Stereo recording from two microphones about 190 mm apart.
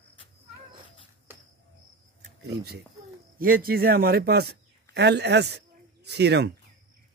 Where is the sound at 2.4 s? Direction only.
60° right (ahead or behind).